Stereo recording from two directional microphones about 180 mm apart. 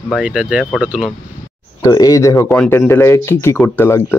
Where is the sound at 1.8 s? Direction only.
20° left (ahead or behind).